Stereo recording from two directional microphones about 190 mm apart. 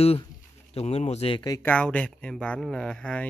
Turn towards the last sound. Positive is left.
turn(degrees=5)  # may be behind; listen again after turning